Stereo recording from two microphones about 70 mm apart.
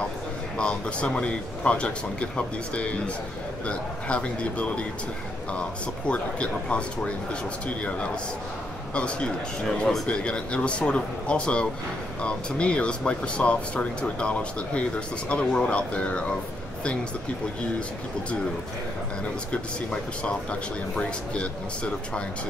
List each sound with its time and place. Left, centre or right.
0.6 s speech: centre
6.0 s speech: centre
19.5 s speech: centre